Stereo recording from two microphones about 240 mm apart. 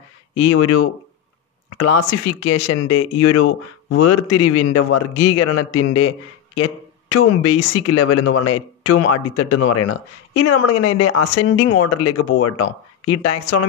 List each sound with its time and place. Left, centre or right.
0.4 s speech: left